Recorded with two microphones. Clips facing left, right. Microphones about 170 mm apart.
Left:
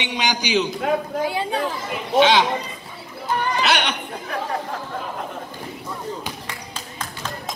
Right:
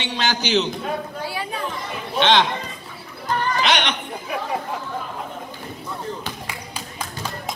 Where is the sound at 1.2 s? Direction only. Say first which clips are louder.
Left 5 dB; 25° left (ahead or behind).